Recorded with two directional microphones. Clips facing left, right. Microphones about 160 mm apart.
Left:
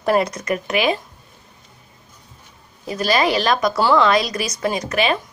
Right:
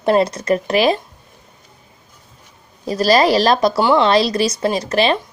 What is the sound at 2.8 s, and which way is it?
Speech, 35° right (ahead or behind).